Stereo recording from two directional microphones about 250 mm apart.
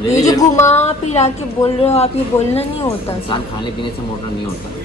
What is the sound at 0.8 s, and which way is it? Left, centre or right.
Speech, left.